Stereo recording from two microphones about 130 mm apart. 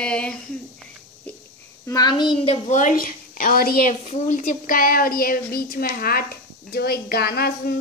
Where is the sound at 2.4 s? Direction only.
50° left (ahead or behind).